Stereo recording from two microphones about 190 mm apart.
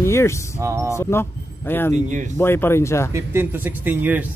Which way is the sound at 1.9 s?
40° right (ahead or behind).